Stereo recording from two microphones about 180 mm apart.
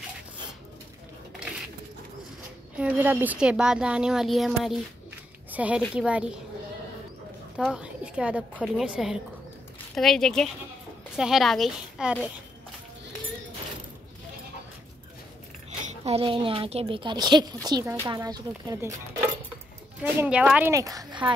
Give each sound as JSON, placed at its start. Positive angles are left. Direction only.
{"t": 2.8, "sound": "a woman's voice", "side_deg": -10}
{"t": 7.5, "sound": "a woman's voice", "side_deg": -5}
{"t": 15.8, "sound": "speech", "side_deg": -35}
{"t": 20.0, "sound": "a woman's voice", "side_deg": -5}